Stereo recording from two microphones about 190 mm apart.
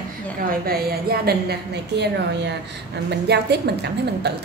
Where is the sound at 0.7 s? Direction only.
55° right (ahead or behind).